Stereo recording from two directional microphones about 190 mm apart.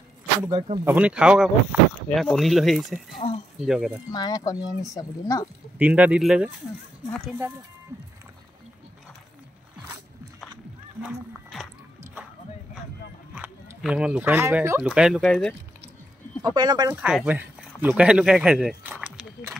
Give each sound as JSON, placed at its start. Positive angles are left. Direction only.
{"t": 0.5, "sound": "speech", "side_deg": -30}
{"t": 0.8, "sound": "speech", "side_deg": -5}
{"t": 4.1, "sound": "speech", "side_deg": 20}
{"t": 5.8, "sound": "speech", "side_deg": -5}
{"t": 13.3, "sound": "speech", "side_deg": -5}
{"t": 16.5, "sound": "speech", "side_deg": -20}
{"t": 16.9, "sound": "speech", "side_deg": -5}